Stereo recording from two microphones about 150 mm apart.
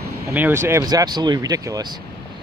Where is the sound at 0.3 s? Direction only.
15° right (ahead or behind).